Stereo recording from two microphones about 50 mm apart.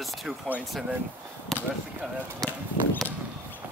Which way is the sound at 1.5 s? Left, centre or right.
Centre.